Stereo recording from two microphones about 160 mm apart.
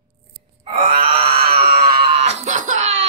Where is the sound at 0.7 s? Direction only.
35° right (ahead or behind).